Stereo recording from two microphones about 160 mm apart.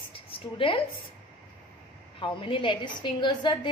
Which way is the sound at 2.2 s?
30° left (ahead or behind).